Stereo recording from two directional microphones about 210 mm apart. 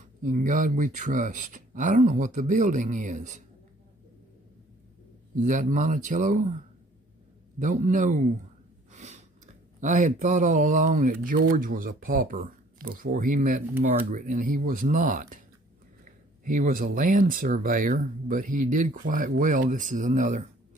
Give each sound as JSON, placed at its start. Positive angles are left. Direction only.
{"t": 0.2, "sound": "speech", "side_deg": -40}
{"t": 5.4, "sound": "speech", "side_deg": -35}
{"t": 7.8, "sound": "speech", "side_deg": -35}
{"t": 8.9, "sound": "a sound", "side_deg": -30}
{"t": 9.8, "sound": "speech", "side_deg": -35}